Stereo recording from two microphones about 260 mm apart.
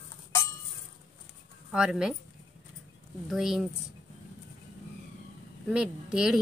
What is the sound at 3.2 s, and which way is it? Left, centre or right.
Speech, centre.